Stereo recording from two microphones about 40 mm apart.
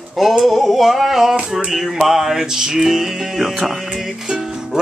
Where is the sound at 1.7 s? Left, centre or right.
Centre.